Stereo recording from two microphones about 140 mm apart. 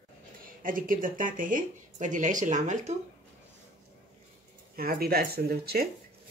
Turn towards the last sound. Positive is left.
turn(degrees=-90)